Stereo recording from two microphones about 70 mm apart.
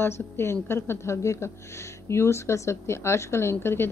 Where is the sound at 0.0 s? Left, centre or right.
Left.